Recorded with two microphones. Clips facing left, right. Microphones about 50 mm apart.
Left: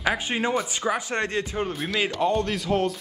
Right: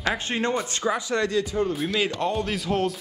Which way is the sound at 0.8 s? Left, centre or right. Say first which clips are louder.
Right 1 dB; left.